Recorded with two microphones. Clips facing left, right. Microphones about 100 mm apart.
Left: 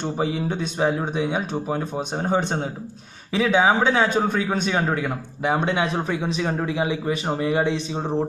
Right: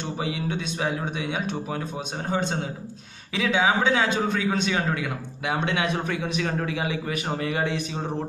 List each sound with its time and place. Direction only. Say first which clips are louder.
0.0 s a man's voice: left 5 dB; 40° left (ahead or behind); by 8.3 s 25° left (ahead or behind)